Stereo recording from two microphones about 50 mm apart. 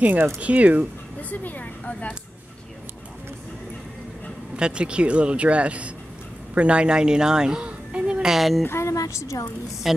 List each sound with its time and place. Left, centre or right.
0.0 s speech: right
1.3 s speech: left
4.6 s speech: centre
8.0 s a sound: centre
8.4 s speech: centre
8.6 s speech: left
9.8 s speech: centre